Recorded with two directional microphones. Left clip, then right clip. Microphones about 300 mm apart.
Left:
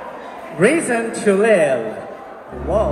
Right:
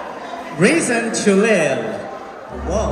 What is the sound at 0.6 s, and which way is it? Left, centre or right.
A man's voice, centre.